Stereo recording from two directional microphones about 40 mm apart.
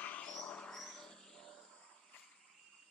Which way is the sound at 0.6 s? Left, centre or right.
Centre.